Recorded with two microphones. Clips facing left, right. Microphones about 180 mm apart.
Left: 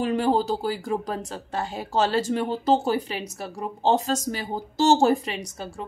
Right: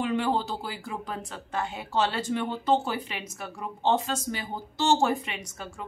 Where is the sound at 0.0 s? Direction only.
40° left (ahead or behind).